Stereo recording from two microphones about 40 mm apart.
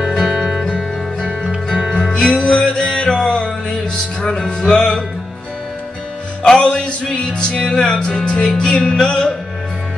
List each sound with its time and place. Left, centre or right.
0.0 s music: centre
2.1 s music: left
6.4 s music: centre